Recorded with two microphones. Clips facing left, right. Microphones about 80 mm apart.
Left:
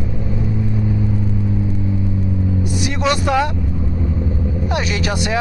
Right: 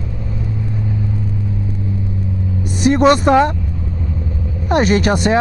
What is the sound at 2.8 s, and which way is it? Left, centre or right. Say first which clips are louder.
Speech: right 10 dB; right.